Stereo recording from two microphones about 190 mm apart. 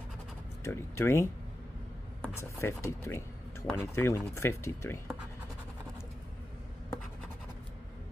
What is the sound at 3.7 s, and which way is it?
Speech, 15° left (ahead or behind).